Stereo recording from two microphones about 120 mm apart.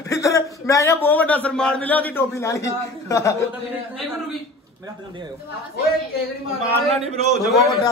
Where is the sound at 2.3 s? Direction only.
25° left (ahead or behind).